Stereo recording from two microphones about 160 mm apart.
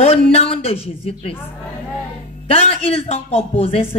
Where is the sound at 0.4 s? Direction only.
35° left (ahead or behind).